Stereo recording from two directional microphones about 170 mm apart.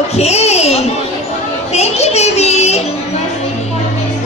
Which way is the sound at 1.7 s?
40° left (ahead or behind).